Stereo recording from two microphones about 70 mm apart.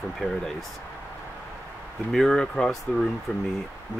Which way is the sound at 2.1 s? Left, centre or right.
Centre.